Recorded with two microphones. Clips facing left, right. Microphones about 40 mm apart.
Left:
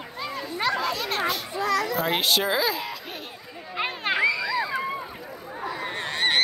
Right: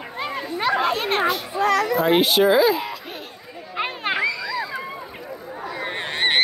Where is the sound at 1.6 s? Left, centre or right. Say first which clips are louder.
Right 5 dB; right.